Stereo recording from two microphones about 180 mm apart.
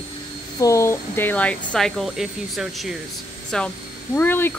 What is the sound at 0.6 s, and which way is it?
Speech, 15° left (ahead or behind).